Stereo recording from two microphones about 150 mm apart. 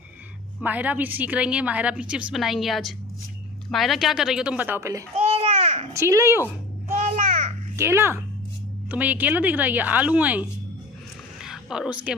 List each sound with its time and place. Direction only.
0.6 s a woman's voice: 10° right (ahead or behind)
5.1 s a sound: 45° right (ahead or behind)
5.9 s a woman's voice: 20° right (ahead or behind)
7.0 s a sound: 50° right (ahead or behind)
7.7 s a woman's voice: 15° right (ahead or behind)
11.4 s speech: 5° right (ahead or behind)